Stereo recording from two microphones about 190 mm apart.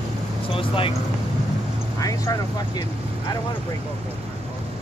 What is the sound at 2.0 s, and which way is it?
Speech, 20° left (ahead or behind).